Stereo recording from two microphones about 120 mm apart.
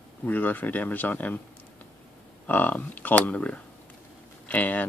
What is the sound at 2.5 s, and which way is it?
Speech, 15° left (ahead or behind).